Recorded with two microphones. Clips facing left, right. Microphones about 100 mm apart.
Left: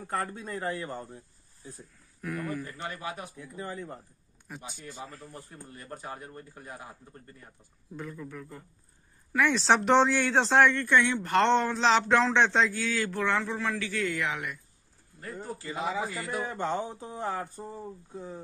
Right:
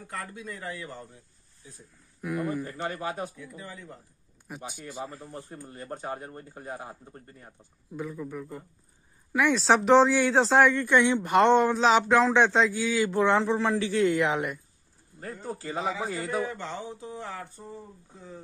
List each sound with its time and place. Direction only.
0.0 s a man's voice: 40° left (ahead or behind)
2.2 s speech: 15° right (ahead or behind)
2.6 s a man's voice: 35° right (ahead or behind)
3.3 s a man's voice: 40° left (ahead or behind)
4.6 s a man's voice: 50° right (ahead or behind)
5.1 s a man's voice: 20° right (ahead or behind)
5.5 s a man's voice: 35° right (ahead or behind)
7.9 s speech: 5° right (ahead or behind)
9.6 s a man's voice: centre (ahead or behind); by 16.3 s 35° right (ahead or behind)
16.5 s a man's voice: 45° left (ahead or behind)